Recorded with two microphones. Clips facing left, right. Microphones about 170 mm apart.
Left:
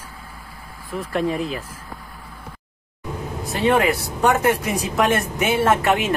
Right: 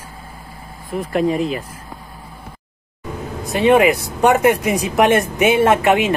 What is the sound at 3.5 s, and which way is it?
Speech, 15° right (ahead or behind).